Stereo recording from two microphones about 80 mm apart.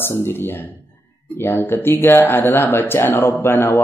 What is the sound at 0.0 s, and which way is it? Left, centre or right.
Speech, left.